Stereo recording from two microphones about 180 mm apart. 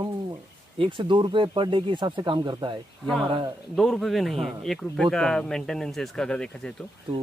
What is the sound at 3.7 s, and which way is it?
Speech, centre (ahead or behind).